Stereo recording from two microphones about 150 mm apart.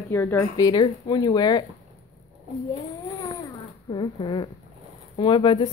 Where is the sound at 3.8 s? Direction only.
35° left (ahead or behind).